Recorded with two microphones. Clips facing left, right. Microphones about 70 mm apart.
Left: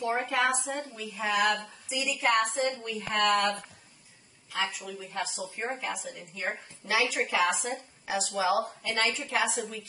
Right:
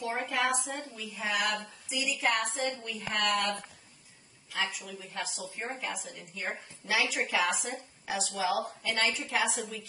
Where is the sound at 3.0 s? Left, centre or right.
Centre.